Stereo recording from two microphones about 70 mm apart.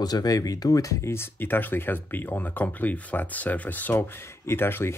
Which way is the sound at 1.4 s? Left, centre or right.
Left.